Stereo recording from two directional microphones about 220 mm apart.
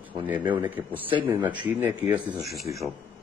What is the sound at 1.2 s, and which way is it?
A man's voice, 10° right (ahead or behind).